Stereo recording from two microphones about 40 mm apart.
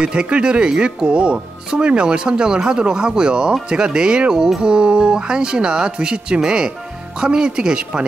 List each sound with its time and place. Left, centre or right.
0.0 s speech: right